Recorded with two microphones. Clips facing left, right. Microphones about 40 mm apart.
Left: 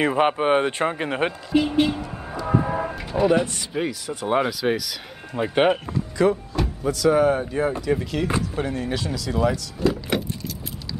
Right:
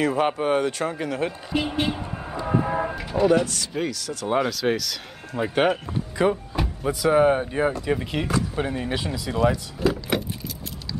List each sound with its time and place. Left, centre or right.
0.0 s speech: left
1.6 s speech: centre
2.4 s vehicle: centre
3.3 s speech: centre
6.1 s speech: centre
9.8 s vehicle: centre